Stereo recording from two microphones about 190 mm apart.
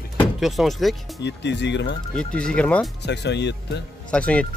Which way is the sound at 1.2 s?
65° left (ahead or behind).